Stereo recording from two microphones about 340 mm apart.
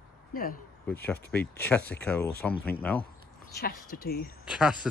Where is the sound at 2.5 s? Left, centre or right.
Left.